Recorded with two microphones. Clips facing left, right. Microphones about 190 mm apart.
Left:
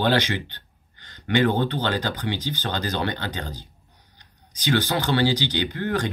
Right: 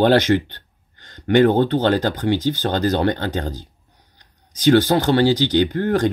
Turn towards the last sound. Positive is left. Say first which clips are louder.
# right 8 dB
turn(degrees=-45)  # may be behind; listen again after turning